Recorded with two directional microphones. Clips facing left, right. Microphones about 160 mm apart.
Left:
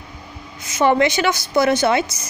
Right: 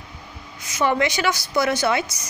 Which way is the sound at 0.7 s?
25° left (ahead or behind).